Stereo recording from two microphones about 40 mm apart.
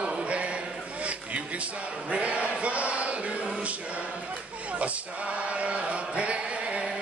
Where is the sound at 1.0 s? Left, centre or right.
Right.